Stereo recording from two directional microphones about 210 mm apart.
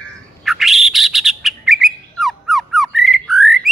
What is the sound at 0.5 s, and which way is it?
Bird, centre (ahead or behind).